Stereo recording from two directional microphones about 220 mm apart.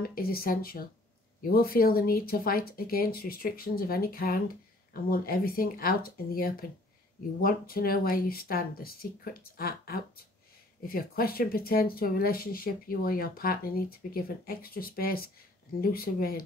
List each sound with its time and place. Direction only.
0.1 s speech: 45° left (ahead or behind)